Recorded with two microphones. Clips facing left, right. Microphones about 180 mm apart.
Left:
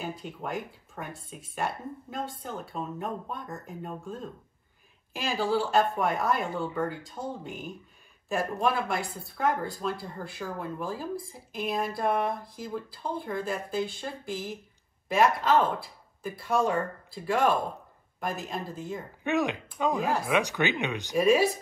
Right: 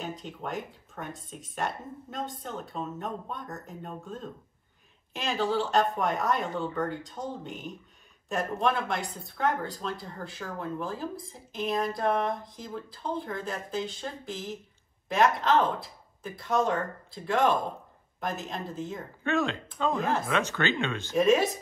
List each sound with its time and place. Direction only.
0.0 s speech: 5° left (ahead or behind)
19.2 s speech: 15° left (ahead or behind)
21.2 s speech: 5° left (ahead or behind)